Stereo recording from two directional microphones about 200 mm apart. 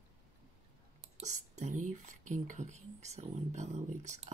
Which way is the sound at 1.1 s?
35° right (ahead or behind).